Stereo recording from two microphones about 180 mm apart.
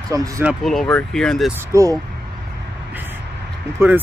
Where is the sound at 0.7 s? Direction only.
5° left (ahead or behind).